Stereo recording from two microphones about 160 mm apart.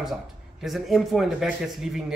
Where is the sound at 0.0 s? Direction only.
Centre (ahead or behind).